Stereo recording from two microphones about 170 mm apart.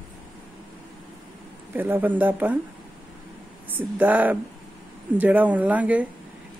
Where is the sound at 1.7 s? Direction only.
10° right (ahead or behind).